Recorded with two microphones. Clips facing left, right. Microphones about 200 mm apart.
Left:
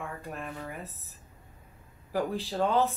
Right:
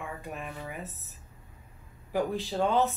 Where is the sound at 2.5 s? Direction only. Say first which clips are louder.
Even; centre (ahead or behind).